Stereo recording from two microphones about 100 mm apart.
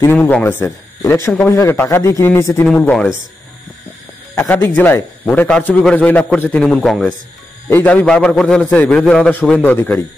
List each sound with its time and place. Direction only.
0.0 s a man's voice: 20° left (ahead or behind)
2.7 s a man's voice: 15° left (ahead or behind)
4.7 s a man's voice: 15° left (ahead or behind)
7.7 s a man's voice: 15° left (ahead or behind)
8.7 s a man's voice: 15° left (ahead or behind)